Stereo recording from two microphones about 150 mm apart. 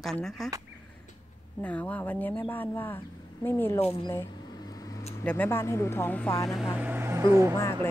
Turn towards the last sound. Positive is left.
turn(degrees=15)  # may be behind; listen again after turning